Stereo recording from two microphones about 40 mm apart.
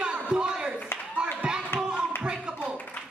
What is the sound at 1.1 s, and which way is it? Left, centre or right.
Clapping, right.